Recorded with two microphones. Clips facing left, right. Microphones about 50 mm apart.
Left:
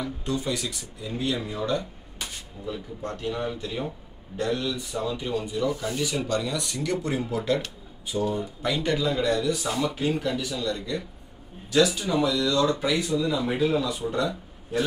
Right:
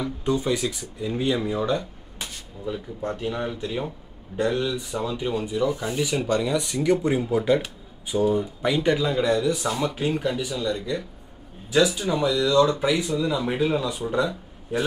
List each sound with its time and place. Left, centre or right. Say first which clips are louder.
0.2 s speech: right 7 dB; right
2.1 s a sound: right 1 dB; centre
3.0 s speech: right 2 dB; centre